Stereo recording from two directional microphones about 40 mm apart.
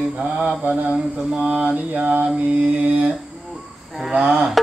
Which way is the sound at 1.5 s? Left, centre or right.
Right.